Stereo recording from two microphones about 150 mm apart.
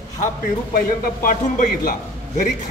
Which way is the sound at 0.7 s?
75° left (ahead or behind).